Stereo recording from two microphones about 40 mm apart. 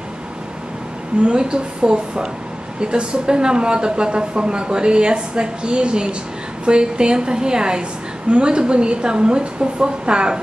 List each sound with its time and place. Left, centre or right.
1.2 s speech: right